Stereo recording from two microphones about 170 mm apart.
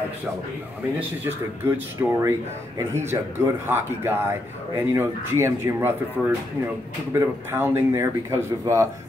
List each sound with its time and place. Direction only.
0.9 s speech: 10° right (ahead or behind)
7.1 s speech: 15° right (ahead or behind)